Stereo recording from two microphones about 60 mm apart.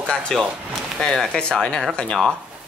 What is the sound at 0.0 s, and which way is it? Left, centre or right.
Speech, centre.